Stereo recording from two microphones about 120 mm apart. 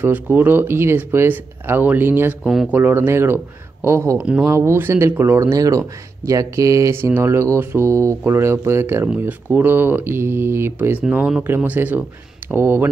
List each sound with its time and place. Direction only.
0.0 s speech: 15° right (ahead or behind)
2.4 s speech: 5° right (ahead or behind)
2.7 s speech: 15° right (ahead or behind)